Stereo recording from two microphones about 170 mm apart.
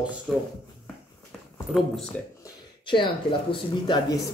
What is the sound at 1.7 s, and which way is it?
Speech, centre (ahead or behind).